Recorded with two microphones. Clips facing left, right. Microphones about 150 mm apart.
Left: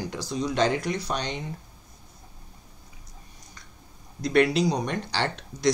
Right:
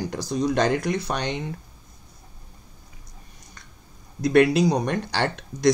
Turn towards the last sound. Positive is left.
turn(degrees=-55)  # may be behind; listen again after turning